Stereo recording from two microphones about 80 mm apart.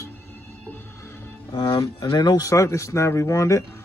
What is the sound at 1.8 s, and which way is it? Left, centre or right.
Speech, left.